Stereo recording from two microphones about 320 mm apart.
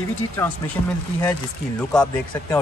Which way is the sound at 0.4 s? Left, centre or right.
Centre.